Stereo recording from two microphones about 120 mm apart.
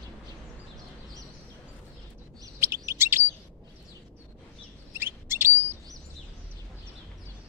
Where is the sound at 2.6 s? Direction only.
20° right (ahead or behind).